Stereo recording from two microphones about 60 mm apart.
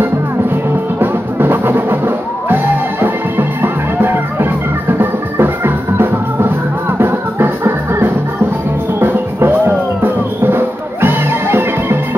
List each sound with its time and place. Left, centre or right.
0.9 s music: right
10.0 s music: right